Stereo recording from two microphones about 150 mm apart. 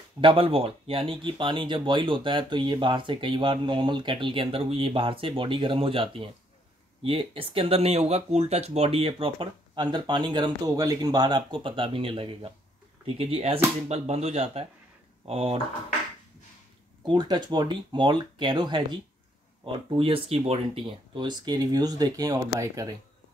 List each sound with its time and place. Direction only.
0.2 s speech: 35° right (ahead or behind)
17.0 s speech: 30° right (ahead or behind)